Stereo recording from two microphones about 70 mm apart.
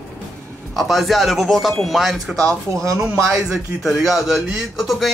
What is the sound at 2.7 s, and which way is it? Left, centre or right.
Speech, right.